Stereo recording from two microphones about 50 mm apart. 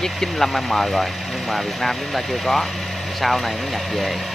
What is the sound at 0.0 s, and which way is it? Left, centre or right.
Speech, centre.